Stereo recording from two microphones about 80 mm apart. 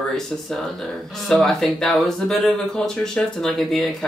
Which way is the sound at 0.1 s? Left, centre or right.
Centre.